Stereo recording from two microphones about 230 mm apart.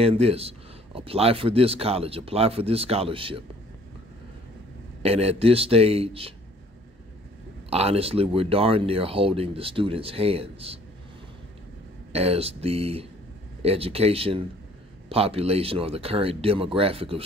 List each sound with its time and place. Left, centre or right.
0.0 s speech: right
5.0 s speech: right
7.7 s speech: right
12.1 s speech: right